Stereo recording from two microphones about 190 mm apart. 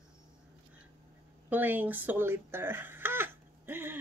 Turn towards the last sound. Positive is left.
turn(degrees=-10)  # may be behind; listen again after turning